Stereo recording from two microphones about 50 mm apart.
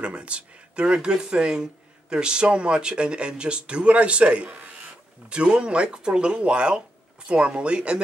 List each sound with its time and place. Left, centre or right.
0.0 s speech: right